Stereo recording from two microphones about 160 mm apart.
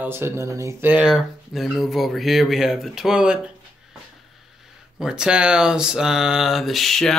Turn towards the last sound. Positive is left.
turn(degrees=0)  # may be behind; listen again after turning